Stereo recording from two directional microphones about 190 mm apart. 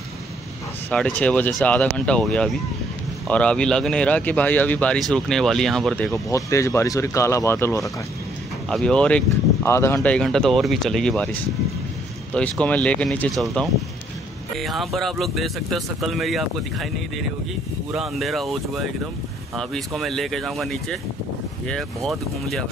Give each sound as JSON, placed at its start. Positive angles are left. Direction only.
{"t": 0.8, "sound": "speech", "side_deg": 5}
{"t": 6.2, "sound": "speech", "side_deg": 15}
{"t": 8.6, "sound": "speech", "side_deg": 5}
{"t": 17.9, "sound": "speech", "side_deg": 0}